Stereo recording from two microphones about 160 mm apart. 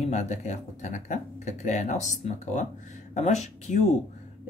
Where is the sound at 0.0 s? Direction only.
45° left (ahead or behind).